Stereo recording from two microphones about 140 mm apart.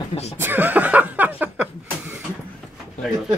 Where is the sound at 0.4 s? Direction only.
15° right (ahead or behind).